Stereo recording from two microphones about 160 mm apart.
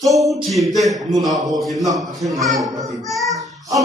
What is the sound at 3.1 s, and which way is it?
Child singing, centre (ahead or behind).